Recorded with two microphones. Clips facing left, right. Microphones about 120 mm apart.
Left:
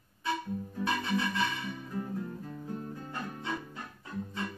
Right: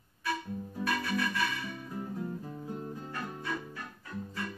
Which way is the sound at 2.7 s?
25° right (ahead or behind).